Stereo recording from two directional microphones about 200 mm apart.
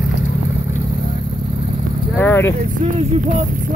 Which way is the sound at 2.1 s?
10° left (ahead or behind).